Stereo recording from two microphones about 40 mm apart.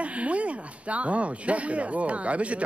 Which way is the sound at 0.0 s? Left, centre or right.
Right.